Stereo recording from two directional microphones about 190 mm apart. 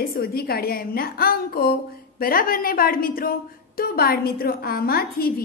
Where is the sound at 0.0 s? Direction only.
55° left (ahead or behind).